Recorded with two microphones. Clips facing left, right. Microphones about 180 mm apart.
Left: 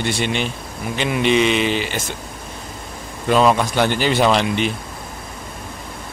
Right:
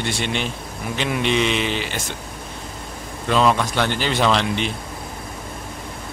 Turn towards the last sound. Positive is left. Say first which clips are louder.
# left 3 dB
turn(degrees=10)  # may be behind; listen again after turning